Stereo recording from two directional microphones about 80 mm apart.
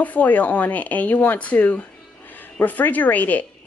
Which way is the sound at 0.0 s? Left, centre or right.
Centre.